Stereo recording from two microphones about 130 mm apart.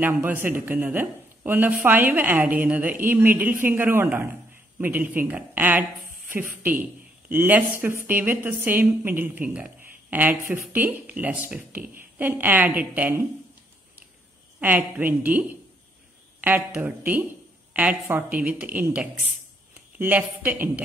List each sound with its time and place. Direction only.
0.0 s a man's voice: 15° right (ahead or behind)
14.6 s a man's voice: 15° right (ahead or behind)